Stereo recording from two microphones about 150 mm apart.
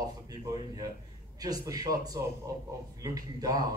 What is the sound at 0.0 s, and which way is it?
A man's voice, 25° right (ahead or behind).